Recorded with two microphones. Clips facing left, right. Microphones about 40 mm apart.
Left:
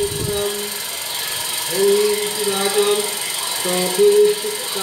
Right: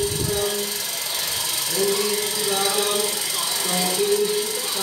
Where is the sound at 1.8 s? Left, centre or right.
Left.